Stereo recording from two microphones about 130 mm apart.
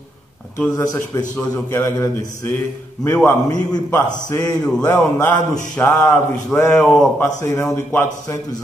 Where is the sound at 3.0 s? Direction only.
15° left (ahead or behind).